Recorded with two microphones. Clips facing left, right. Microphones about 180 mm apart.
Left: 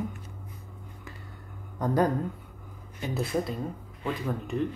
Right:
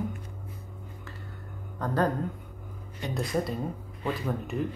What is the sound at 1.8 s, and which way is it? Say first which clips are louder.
Speech: left 2 dB; 15° left (ahead or behind).